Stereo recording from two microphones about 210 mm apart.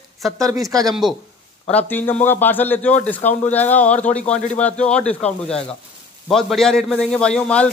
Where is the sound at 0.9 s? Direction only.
Centre (ahead or behind).